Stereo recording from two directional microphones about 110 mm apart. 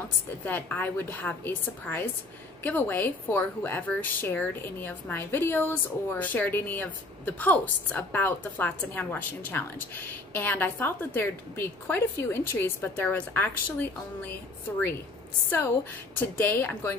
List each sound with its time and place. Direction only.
0.5 s a woman's voice: 15° left (ahead or behind)
15.5 s a woman's voice: 20° left (ahead or behind)